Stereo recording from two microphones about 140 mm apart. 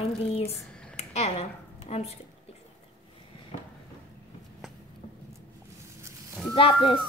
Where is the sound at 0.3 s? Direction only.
50° left (ahead or behind).